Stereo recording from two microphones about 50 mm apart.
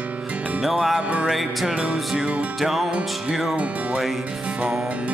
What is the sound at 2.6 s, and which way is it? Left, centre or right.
Music, centre.